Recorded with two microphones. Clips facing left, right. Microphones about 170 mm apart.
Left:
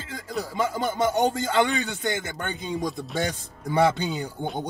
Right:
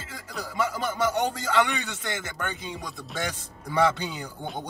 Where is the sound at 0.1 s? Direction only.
30° left (ahead or behind).